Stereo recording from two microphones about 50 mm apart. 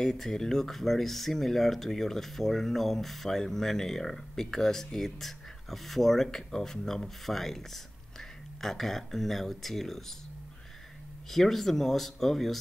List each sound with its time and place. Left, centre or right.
0.0 s speech: centre
11.2 s speech: centre